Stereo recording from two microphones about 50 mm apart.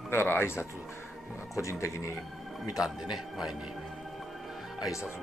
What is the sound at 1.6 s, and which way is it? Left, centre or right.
Speech, left.